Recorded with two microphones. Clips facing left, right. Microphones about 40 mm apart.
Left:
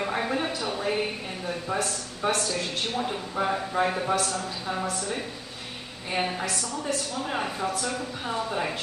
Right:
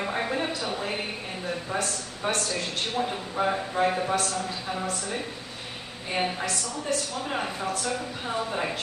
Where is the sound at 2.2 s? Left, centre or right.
Centre.